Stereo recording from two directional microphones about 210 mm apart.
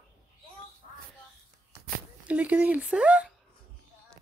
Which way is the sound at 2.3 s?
5° right (ahead or behind).